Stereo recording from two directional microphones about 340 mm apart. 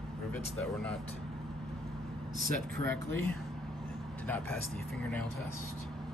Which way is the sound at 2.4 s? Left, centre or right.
Right.